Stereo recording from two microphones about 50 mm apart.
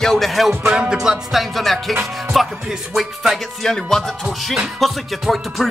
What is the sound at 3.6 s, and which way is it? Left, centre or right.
Music, centre.